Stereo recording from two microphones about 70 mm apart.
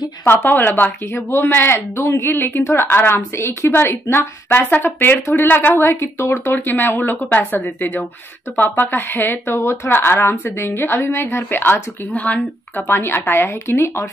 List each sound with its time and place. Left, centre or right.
0.3 s speech: left